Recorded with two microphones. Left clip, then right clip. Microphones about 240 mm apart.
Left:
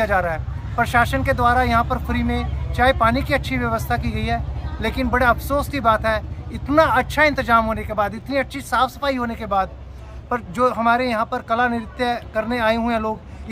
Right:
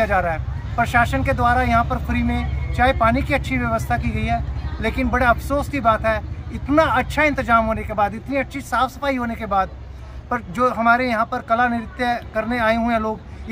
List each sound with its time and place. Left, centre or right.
0.0 s speech: centre